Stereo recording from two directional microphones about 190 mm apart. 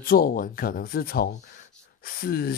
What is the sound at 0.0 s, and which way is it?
Speech, 50° left (ahead or behind).